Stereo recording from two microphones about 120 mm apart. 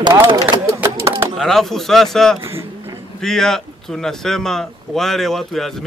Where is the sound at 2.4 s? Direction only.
20° right (ahead or behind).